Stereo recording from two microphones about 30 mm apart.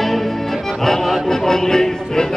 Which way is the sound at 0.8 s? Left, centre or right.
Centre.